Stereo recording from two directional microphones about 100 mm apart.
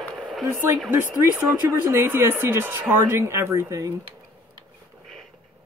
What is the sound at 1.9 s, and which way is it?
Speech, 25° right (ahead or behind).